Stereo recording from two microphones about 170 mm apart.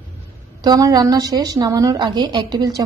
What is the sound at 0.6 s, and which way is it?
A woman's voice, 20° right (ahead or behind).